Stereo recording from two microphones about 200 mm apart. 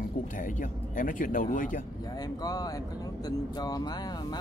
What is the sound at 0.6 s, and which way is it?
Speech, 40° left (ahead or behind).